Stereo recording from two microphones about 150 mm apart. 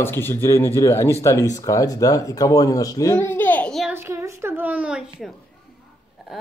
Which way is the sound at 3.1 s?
15° left (ahead or behind).